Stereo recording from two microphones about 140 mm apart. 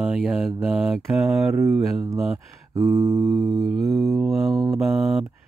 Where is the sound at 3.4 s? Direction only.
Centre (ahead or behind).